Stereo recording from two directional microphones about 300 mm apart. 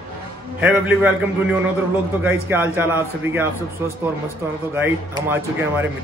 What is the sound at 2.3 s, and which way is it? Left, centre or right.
A man's voice, centre.